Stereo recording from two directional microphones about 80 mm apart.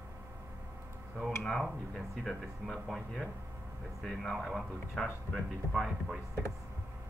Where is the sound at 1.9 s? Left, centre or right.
Centre.